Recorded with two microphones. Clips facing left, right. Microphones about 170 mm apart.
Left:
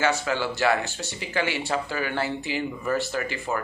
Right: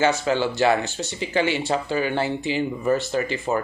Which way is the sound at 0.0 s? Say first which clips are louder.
Right 4 dB; 25° right (ahead or behind).